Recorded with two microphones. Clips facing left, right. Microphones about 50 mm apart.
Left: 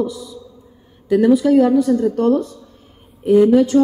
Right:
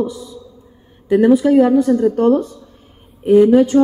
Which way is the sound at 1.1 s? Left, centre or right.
Right.